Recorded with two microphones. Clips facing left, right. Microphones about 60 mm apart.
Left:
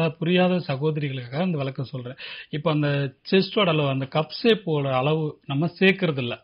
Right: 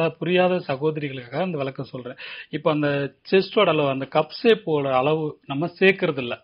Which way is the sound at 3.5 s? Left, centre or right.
Centre.